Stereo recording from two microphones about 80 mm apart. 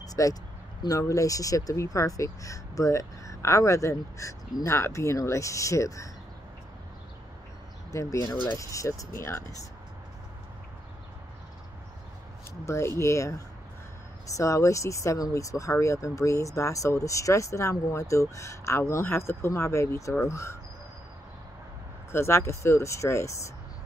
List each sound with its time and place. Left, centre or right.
0.0 s vehicle: left
0.8 s speech: left
7.9 s speech: left
12.6 s speech: left
22.1 s speech: left